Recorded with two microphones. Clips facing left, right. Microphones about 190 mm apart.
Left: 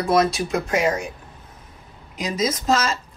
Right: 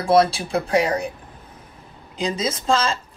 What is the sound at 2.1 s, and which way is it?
Speech, 30° right (ahead or behind).